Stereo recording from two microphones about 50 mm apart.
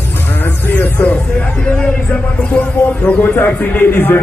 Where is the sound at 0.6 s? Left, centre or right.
Left.